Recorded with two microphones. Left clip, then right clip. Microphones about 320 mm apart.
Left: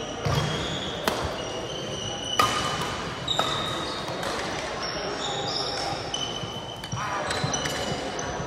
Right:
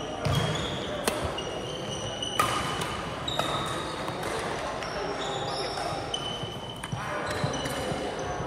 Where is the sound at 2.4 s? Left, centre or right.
Centre.